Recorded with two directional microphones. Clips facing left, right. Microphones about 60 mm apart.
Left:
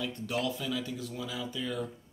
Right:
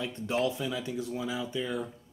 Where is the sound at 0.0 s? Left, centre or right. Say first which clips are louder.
Right 3 dB; right.